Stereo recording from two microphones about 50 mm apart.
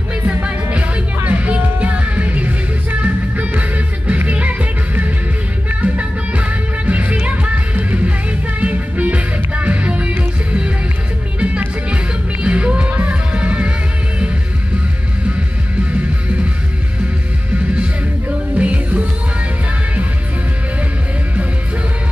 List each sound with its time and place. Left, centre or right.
0.3 s music: right
11.3 s music: right
18.6 s music: right